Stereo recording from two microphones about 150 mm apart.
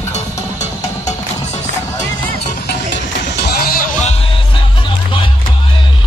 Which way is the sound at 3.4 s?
85° left.